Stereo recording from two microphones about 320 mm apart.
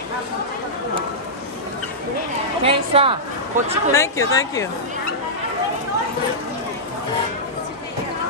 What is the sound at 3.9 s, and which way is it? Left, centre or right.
Speech, centre.